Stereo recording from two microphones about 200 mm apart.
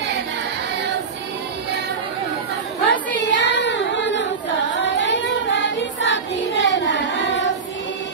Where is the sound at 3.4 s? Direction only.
65° left (ahead or behind).